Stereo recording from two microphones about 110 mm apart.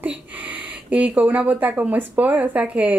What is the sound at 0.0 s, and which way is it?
Speech, 15° right (ahead or behind).